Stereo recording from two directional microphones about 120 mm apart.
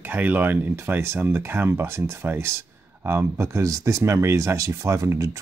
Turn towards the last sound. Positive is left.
turn(degrees=-25)  # may be behind; listen again after turning